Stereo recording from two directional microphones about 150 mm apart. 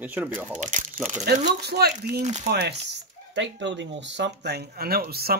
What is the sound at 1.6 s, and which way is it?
Speech, 90° right.